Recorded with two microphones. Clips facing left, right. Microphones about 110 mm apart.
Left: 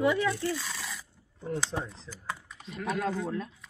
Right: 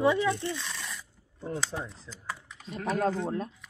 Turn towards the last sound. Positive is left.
turn(degrees=-30)  # may be behind; listen again after turning